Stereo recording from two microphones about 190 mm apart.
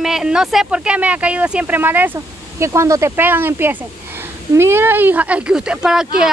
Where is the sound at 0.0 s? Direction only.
5° right (ahead or behind).